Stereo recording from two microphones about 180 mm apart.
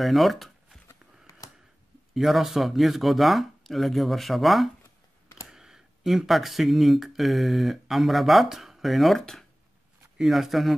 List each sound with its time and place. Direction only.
0.0 s speech: centre (ahead or behind)
0.8 s a sound: 20° left (ahead or behind)
2.1 s speech: centre (ahead or behind)